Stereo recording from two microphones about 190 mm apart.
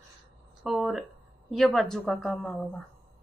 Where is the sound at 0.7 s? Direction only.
Centre (ahead or behind).